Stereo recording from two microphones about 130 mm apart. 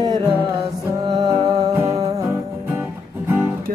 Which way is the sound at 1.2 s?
30° right (ahead or behind).